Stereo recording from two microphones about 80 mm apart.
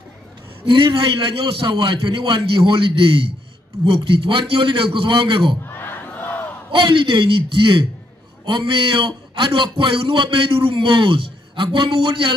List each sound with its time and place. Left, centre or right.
0.7 s a man's voice: right
5.6 s crowd: left
6.7 s a man's voice: right